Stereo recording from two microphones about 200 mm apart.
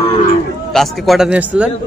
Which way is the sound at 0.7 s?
Centre (ahead or behind).